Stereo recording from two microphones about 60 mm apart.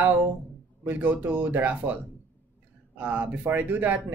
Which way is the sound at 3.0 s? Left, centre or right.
Right.